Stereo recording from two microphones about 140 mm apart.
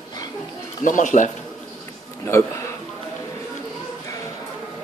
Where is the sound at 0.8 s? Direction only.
65° left (ahead or behind).